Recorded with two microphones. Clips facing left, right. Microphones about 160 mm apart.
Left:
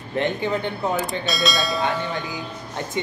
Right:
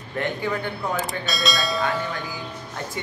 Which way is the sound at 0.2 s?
20° left (ahead or behind).